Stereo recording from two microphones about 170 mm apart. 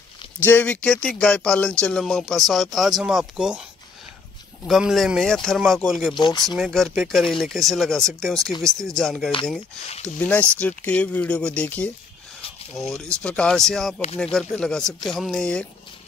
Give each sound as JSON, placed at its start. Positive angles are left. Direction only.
{"t": 0.5, "sound": "speech", "side_deg": 10}
{"t": 4.6, "sound": "speech", "side_deg": 0}
{"t": 6.1, "sound": "speech", "side_deg": 25}
{"t": 6.4, "sound": "speech", "side_deg": 0}